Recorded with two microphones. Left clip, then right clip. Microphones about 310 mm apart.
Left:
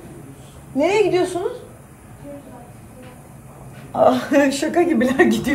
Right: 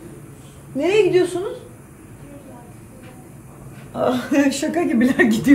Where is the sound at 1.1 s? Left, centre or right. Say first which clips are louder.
Right 2 dB; left.